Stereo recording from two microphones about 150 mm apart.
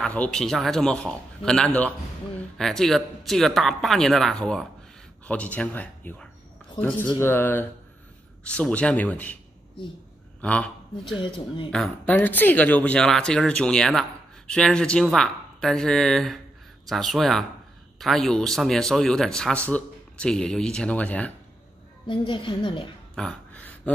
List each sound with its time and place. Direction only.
0.0 s a man's voice: 5° left (ahead or behind)
10.4 s a man's voice: 10° left (ahead or behind)
11.1 s a woman's voice: 35° left (ahead or behind)
11.7 s a man's voice: 5° left (ahead or behind)
22.0 s a woman's voice: 35° left (ahead or behind)
23.1 s a sound: 5° left (ahead or behind)